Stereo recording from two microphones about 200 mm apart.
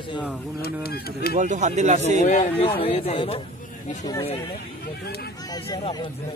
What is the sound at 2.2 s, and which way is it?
A man's voice, 35° left (ahead or behind).